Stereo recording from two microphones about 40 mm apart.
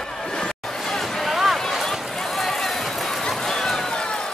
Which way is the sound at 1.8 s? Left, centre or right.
Centre.